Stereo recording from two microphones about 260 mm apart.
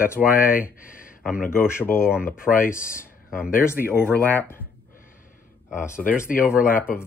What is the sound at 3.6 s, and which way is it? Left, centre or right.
Speech, centre.